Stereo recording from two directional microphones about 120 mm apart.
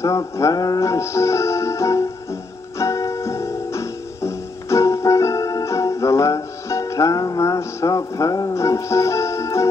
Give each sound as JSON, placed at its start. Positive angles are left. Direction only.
{"t": 0.0, "sound": "music", "side_deg": 25}